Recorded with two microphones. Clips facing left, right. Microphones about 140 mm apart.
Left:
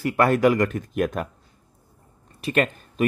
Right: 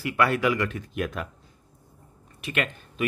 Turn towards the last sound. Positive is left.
turn(degrees=40)  # may be behind; listen again after turning